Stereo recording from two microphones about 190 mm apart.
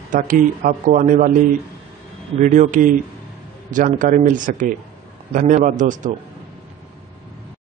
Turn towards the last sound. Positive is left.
turn(degrees=-40)  # may be behind; listen again after turning